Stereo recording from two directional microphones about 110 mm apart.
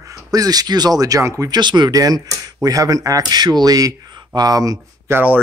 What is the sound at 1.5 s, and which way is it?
Speech, 40° right (ahead or behind).